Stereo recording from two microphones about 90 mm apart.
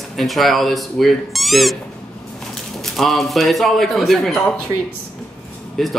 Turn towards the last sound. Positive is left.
turn(degrees=5)  # may be behind; listen again after turning